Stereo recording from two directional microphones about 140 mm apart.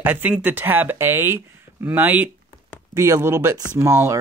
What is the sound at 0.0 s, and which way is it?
Speech, 10° right (ahead or behind).